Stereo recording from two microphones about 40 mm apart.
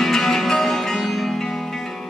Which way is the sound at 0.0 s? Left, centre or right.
Centre.